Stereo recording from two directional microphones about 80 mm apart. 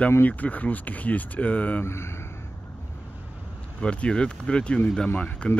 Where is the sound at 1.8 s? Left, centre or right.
Left.